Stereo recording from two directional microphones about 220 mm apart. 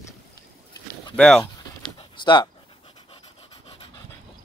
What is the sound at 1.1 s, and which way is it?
Speech, 5° left (ahead or behind).